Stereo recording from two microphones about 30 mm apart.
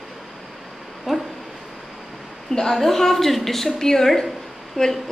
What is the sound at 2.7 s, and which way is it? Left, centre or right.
A woman's voice, centre.